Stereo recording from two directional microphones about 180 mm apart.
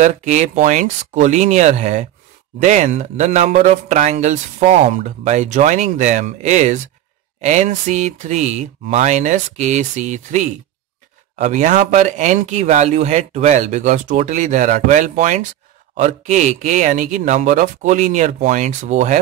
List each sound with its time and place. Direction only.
0.0 s speech: 40° right (ahead or behind)